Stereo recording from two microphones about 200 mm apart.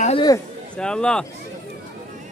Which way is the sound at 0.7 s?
5° left (ahead or behind).